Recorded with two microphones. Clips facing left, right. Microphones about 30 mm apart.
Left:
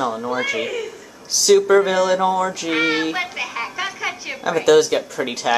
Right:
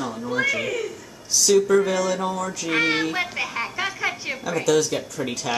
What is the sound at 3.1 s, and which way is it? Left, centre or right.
Speech, centre.